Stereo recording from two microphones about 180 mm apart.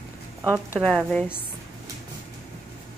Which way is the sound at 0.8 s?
5° left (ahead or behind).